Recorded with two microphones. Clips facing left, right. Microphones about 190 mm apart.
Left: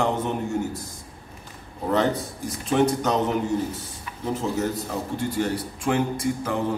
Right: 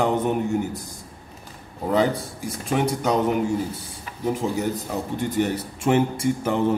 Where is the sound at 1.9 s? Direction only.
10° right (ahead or behind).